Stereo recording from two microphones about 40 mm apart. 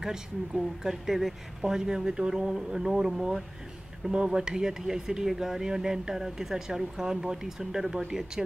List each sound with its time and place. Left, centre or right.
0.0 s speech: centre